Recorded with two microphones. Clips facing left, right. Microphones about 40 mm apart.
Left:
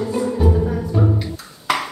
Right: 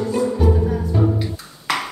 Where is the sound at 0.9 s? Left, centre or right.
Centre.